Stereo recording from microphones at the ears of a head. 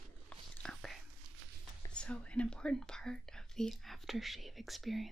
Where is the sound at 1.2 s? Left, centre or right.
Right.